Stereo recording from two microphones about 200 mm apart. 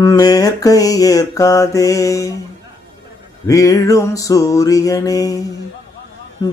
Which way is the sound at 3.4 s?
15° left (ahead or behind).